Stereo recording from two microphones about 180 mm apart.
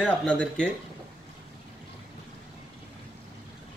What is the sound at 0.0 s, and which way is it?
Speech, 5° left (ahead or behind).